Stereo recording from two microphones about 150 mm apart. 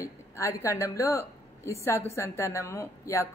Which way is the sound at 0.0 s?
20° left (ahead or behind).